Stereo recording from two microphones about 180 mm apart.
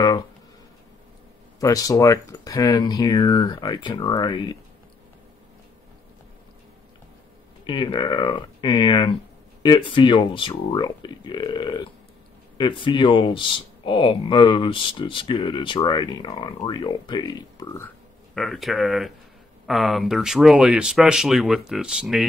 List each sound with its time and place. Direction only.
1.6 s speech: 20° left (ahead or behind)
7.6 s speech: 25° left (ahead or behind)
17.8 s speech: centre (ahead or behind)